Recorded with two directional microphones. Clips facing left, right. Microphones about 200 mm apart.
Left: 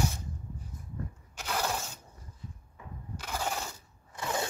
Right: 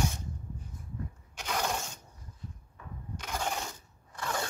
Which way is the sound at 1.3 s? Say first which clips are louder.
Even; 5° left (ahead or behind).